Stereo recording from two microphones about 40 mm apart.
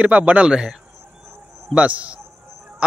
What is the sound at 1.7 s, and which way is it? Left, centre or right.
Speech, right.